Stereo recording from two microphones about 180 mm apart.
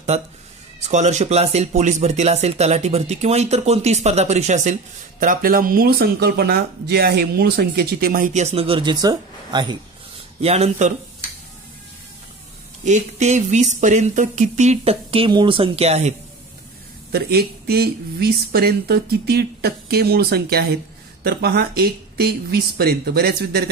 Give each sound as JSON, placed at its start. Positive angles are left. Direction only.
{"t": 0.8, "sound": "speech", "side_deg": -40}
{"t": 5.2, "sound": "speech", "side_deg": -50}
{"t": 10.4, "sound": "speech", "side_deg": -35}
{"t": 12.8, "sound": "speech", "side_deg": -40}
{"t": 17.1, "sound": "speech", "side_deg": -60}